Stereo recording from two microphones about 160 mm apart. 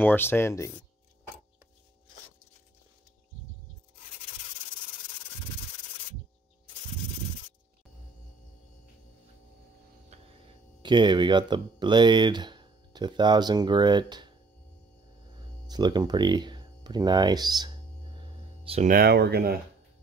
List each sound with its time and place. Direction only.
0.0 s speech: 15° left (ahead or behind)
10.8 s speech: 30° right (ahead or behind)
15.6 s speech: 25° right (ahead or behind)
18.1 s music: 35° right (ahead or behind)
18.9 s speech: 70° right (ahead or behind)